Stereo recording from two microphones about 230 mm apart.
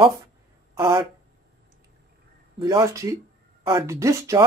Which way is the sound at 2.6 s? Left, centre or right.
Centre.